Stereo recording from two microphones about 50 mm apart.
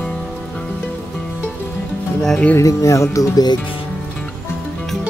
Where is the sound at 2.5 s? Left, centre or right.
Left.